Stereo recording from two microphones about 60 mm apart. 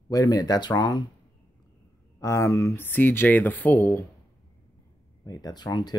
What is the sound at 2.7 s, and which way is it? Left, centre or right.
Speech, left.